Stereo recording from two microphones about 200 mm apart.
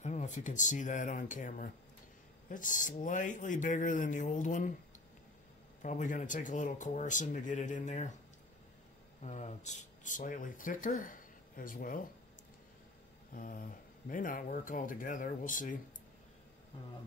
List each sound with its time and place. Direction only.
0.0 s speech: 35° left (ahead or behind)
5.8 s speech: 40° left (ahead or behind)
9.2 s speech: 35° left (ahead or behind)
13.3 s speech: 45° left (ahead or behind)